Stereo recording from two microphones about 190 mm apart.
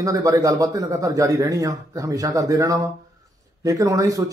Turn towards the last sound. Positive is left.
turn(degrees=-20)  # may be behind; listen again after turning